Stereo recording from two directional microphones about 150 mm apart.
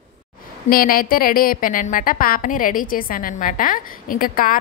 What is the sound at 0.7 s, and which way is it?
A woman's voice, 75° left (ahead or behind).